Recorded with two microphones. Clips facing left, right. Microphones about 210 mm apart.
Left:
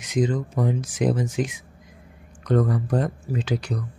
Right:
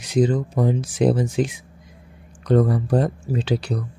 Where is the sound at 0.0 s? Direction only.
35° right (ahead or behind).